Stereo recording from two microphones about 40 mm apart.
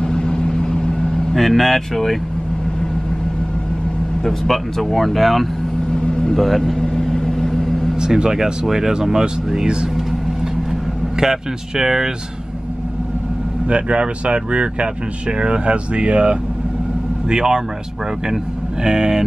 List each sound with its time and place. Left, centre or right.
0.0 s vehicle: centre
1.3 s speech: centre
4.2 s speech: centre
5.9 s vehicle: centre
6.3 s speech: centre
6.8 s vehicle: centre
8.0 s speech: centre
11.1 s speech: centre
13.7 s speech: right
17.3 s speech: centre
18.9 s speech: centre